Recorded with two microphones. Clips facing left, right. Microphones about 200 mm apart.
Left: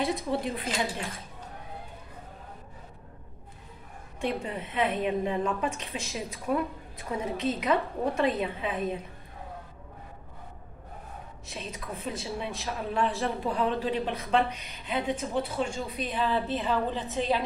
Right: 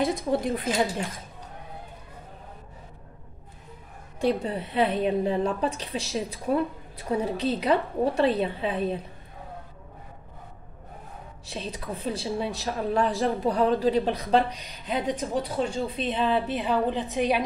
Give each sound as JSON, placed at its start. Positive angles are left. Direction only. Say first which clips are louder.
{"t": 0.0, "sound": "speech", "louder": "right 4 dB", "side_deg": -50}
{"t": 4.2, "sound": "a woman's voice", "louder": "right 6 dB", "side_deg": -35}
{"t": 11.4, "sound": "a woman's voice", "louder": "right 5 dB", "side_deg": -30}